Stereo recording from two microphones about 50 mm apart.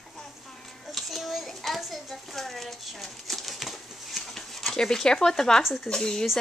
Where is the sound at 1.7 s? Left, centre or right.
Centre.